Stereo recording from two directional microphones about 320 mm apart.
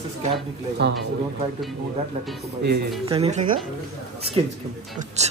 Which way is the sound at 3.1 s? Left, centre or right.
Centre.